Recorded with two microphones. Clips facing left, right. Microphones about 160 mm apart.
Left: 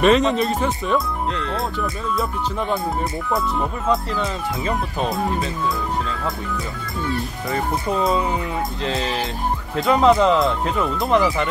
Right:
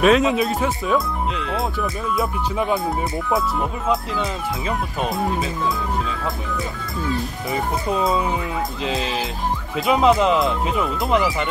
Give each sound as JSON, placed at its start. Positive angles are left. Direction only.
{"t": 0.0, "sound": "speech", "side_deg": 0}
{"t": 7.4, "sound": "speech", "side_deg": -15}